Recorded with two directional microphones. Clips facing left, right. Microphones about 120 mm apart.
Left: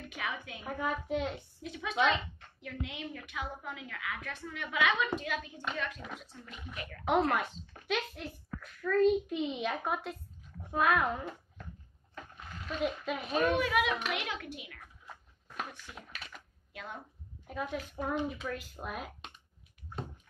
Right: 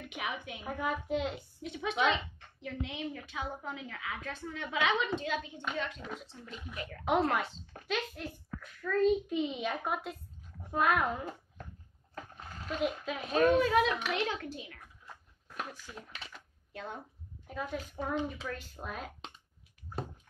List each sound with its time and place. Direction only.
0.0 s a woman's voice: 20° right (ahead or behind)
0.7 s a child's voice: 5° right (ahead or behind)
1.6 s a woman's voice: 25° right (ahead or behind)
2.0 s speech: centre (ahead or behind)
2.6 s a woman's voice: 30° right (ahead or behind)
7.1 s a child's voice: centre (ahead or behind)
12.6 s a child's voice: 5° right (ahead or behind)
13.6 s a child's voice: 30° right (ahead or behind)
13.8 s a child's voice: 5° left (ahead or behind)
14.1 s a child's voice: 30° right (ahead or behind)
15.0 s a sound: centre (ahead or behind)
16.7 s a woman's voice: 30° right (ahead or behind)
17.5 s a child's voice: centre (ahead or behind)